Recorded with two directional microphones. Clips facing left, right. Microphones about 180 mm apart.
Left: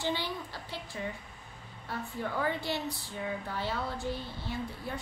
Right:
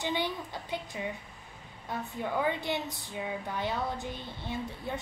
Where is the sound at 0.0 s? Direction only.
20° right (ahead or behind).